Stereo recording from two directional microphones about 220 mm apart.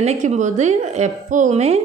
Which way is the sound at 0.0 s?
30° right (ahead or behind).